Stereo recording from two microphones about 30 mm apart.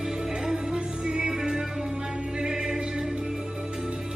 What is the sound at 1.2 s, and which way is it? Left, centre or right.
Music, centre.